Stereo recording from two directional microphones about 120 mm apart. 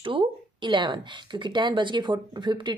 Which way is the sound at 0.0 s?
45° right (ahead or behind).